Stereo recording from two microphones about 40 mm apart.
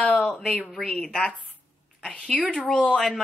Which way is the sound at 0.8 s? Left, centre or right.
Left.